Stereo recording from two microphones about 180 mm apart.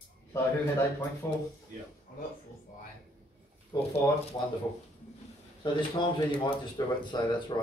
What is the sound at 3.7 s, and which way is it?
Speech, 20° left (ahead or behind).